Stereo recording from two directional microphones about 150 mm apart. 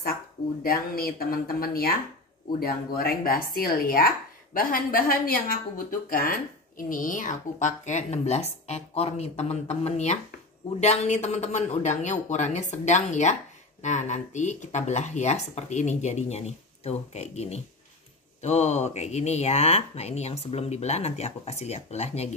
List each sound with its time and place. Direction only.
0.7 s speech: 80° left
3.0 s a woman's voice: 85° left; by 22.3 s 45° left (ahead or behind)